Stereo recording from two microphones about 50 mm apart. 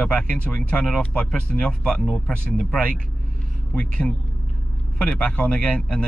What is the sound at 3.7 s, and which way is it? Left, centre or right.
Speech, left.